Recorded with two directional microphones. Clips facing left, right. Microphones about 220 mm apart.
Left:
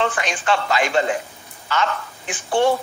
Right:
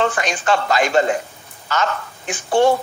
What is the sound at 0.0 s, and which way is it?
A woman's voice, 45° right (ahead or behind).